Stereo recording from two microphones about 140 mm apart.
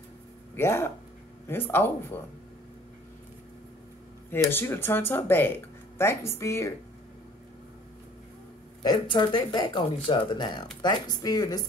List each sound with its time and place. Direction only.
0.6 s speech: 15° left (ahead or behind)
4.3 s speech: 15° left (ahead or behind)
8.8 s speech: 35° left (ahead or behind)